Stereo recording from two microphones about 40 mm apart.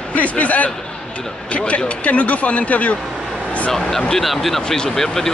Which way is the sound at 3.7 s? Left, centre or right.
Centre.